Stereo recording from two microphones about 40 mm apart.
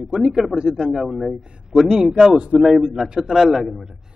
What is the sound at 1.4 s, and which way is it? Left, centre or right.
Speech, right.